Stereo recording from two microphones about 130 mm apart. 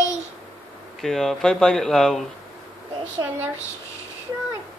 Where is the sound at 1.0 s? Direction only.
5° left (ahead or behind).